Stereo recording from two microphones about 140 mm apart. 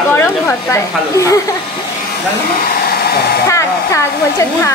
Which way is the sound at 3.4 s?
20° left (ahead or behind).